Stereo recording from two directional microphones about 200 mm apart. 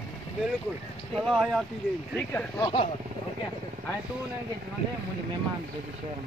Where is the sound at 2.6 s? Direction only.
25° left (ahead or behind).